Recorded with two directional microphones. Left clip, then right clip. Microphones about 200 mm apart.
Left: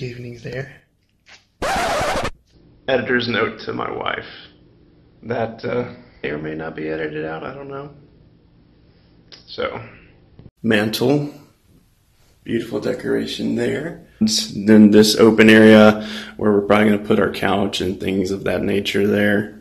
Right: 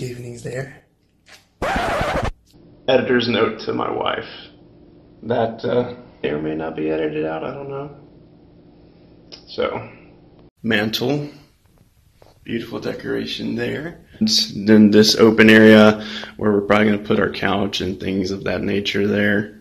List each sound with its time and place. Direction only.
0.0 s speech: centre (ahead or behind)
1.6 s scratch: 10° right (ahead or behind)
2.8 s speech: centre (ahead or behind)
9.3 s speech: centre (ahead or behind)
10.6 s speech: 25° left (ahead or behind)
12.4 s speech: 15° left (ahead or behind); by 19.4 s centre (ahead or behind)